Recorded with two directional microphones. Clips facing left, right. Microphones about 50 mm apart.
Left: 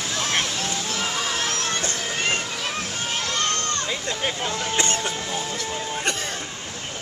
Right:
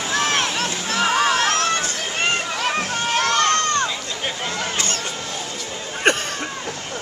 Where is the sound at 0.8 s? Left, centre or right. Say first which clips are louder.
Right 8 dB; right.